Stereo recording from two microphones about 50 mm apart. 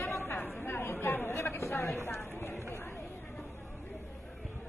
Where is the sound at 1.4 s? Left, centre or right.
Left.